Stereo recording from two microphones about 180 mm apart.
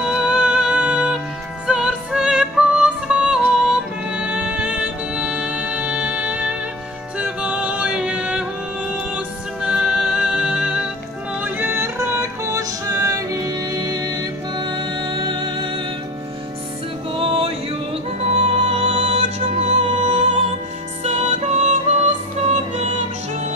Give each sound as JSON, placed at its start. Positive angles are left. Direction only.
{"t": 0.0, "sound": "music", "side_deg": -5}
{"t": 17.1, "sound": "music", "side_deg": -30}